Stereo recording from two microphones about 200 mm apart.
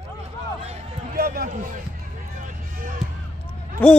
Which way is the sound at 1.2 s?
45° right (ahead or behind).